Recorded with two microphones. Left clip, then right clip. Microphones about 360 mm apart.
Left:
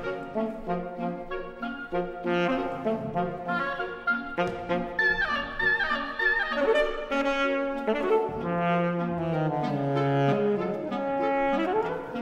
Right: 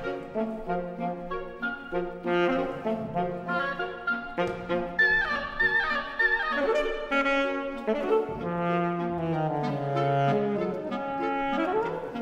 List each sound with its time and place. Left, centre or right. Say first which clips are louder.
2.0 s brass instrument: even; centre
3.4 s music: even; centre
4.4 s music: even; centre
10.9 s music: left 3 dB; centre
11.3 s saxophone: left 2 dB; centre